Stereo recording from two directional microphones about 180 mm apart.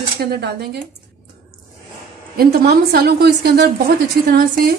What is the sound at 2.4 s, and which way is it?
Speech, 60° right (ahead or behind).